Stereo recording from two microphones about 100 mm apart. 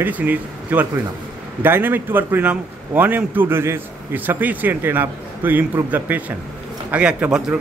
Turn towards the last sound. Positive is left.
turn(degrees=-10)  # may be behind; listen again after turning